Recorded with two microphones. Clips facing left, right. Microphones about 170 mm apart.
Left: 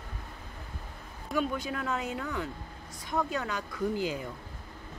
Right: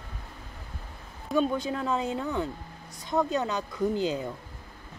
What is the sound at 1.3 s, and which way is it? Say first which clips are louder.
Speech: right 5 dB; 25° right (ahead or behind).